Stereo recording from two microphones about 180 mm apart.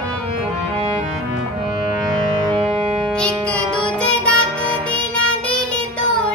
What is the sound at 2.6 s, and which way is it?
Music, 30° right (ahead or behind).